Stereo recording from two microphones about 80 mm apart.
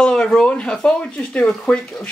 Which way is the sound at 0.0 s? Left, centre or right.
Centre.